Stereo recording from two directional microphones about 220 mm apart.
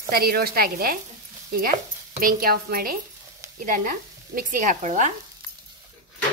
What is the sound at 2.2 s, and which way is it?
Speech, 40° right (ahead or behind).